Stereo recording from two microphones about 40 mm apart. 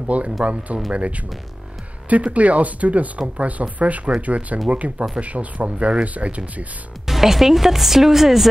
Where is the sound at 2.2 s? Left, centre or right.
Right.